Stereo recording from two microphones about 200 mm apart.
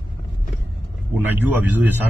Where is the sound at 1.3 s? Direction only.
10° right (ahead or behind).